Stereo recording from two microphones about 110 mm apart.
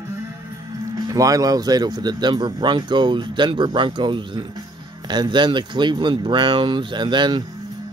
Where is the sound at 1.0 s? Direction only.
35° right (ahead or behind).